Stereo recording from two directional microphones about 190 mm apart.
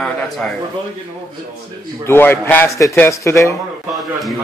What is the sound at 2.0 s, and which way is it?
A man's voice, 10° left (ahead or behind).